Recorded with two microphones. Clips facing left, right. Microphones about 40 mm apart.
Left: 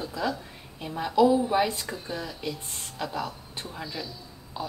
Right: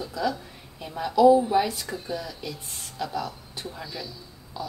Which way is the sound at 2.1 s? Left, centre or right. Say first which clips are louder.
Left 2 dB; left.